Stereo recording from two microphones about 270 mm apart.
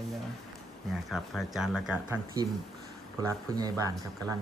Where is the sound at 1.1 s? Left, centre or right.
Centre.